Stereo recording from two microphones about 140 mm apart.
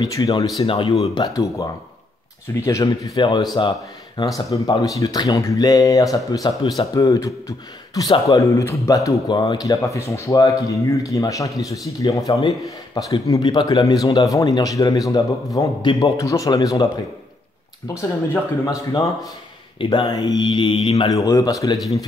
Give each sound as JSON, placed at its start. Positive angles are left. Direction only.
{"t": 0.0, "sound": "speech", "side_deg": 30}
{"t": 0.6, "sound": "speech", "side_deg": 40}
{"t": 1.1, "sound": "speech", "side_deg": 25}
{"t": 9.3, "sound": "speech", "side_deg": 35}
{"t": 17.8, "sound": "speech", "side_deg": 20}
{"t": 19.8, "sound": "speech", "side_deg": 35}
{"t": 21.1, "sound": "speech", "side_deg": 25}